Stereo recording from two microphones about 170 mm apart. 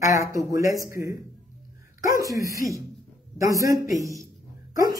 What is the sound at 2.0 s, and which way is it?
Speech, 20° right (ahead or behind).